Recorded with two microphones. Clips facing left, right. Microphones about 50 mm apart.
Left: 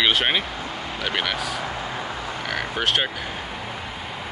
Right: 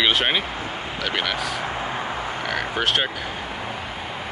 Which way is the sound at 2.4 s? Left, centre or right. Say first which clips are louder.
Right 1 dB; centre.